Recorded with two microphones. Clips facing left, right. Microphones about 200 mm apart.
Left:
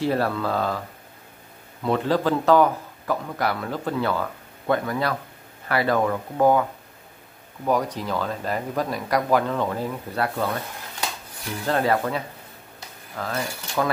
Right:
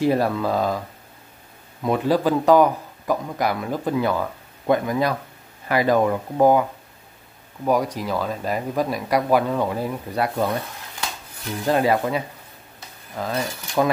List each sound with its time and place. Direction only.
0.0 s a man's voice: 15° right (ahead or behind)
7.6 s a man's voice: 10° right (ahead or behind)
11.6 s a man's voice: 15° right (ahead or behind)